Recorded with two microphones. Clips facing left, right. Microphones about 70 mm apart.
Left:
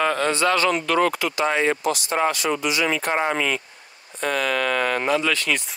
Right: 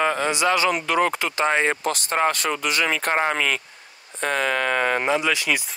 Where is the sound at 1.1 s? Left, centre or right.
Right.